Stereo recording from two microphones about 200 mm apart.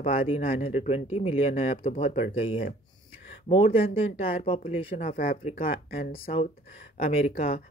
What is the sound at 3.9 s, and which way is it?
Speech, 30° left (ahead or behind).